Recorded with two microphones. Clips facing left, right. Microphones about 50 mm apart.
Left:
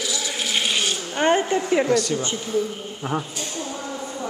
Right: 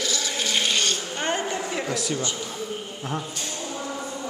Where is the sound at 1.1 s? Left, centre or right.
Left.